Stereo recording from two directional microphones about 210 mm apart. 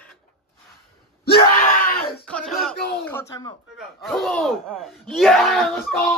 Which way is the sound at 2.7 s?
50° left (ahead or behind).